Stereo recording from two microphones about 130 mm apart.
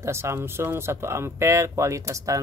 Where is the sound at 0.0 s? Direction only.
20° right (ahead or behind).